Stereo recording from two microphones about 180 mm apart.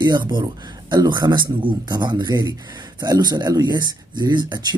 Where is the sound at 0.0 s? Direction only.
25° right (ahead or behind).